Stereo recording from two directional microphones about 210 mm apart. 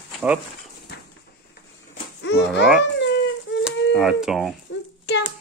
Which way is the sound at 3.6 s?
Centre (ahead or behind).